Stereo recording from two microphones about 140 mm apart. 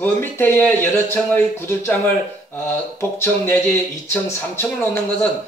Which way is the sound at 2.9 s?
20° left (ahead or behind).